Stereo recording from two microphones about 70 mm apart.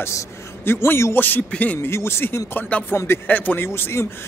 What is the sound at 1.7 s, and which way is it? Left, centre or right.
Speech, left.